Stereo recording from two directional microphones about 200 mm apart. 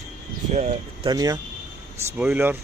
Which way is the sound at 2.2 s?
10° right (ahead or behind).